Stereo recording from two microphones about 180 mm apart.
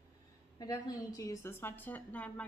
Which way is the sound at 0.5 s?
20° left (ahead or behind).